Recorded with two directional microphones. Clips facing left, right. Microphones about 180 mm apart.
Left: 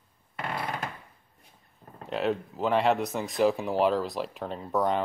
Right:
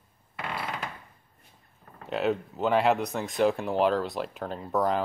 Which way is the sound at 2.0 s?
Centre (ahead or behind).